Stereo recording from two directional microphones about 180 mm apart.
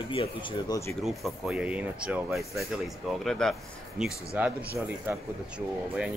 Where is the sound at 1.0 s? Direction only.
Centre (ahead or behind).